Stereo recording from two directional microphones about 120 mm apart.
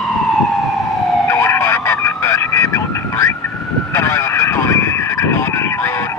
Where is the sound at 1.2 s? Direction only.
20° left (ahead or behind).